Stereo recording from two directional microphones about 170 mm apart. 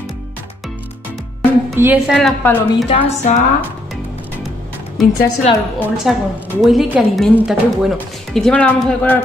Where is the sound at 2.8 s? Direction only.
35° left (ahead or behind).